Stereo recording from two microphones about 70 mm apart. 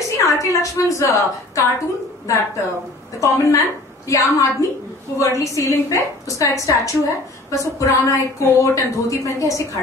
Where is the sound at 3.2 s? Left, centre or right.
Left.